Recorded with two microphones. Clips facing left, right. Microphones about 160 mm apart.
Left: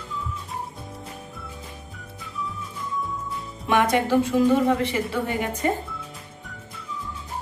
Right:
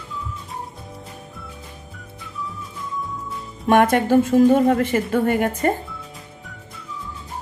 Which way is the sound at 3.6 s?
50° right (ahead or behind).